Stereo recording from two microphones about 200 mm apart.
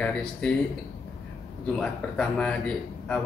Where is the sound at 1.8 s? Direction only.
5° left (ahead or behind).